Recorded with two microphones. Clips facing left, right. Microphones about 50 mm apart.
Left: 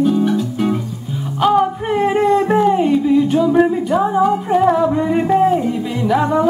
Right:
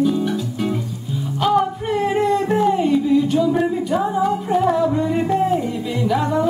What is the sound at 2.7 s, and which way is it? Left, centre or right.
Music, centre.